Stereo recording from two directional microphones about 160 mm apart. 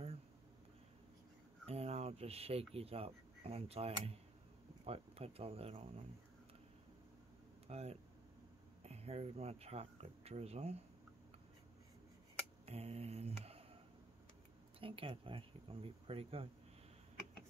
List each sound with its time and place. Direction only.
1.7 s a sound: 40° right (ahead or behind)
2.7 s speech: 40° right (ahead or behind)
7.6 s speech: 40° right (ahead or behind)
12.6 s mantra: 40° right (ahead or behind)
14.8 s speech: 35° right (ahead or behind)